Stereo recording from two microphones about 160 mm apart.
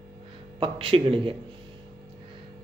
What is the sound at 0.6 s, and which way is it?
Speech, 35° right (ahead or behind).